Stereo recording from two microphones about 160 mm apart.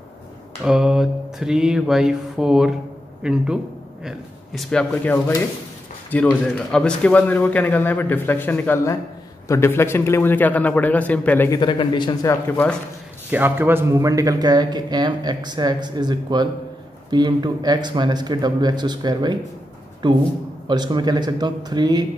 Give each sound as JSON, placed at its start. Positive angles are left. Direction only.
{"t": 0.6, "sound": "a sound", "side_deg": -5}
{"t": 3.2, "sound": "a man's voice", "side_deg": -5}
{"t": 4.0, "sound": "a sound", "side_deg": 0}
{"t": 6.0, "sound": "a man's voice", "side_deg": 10}
{"t": 11.6, "sound": "speech", "side_deg": 30}
{"t": 12.3, "sound": "a man's voice", "side_deg": 10}
{"t": 13.3, "sound": "speech", "side_deg": -10}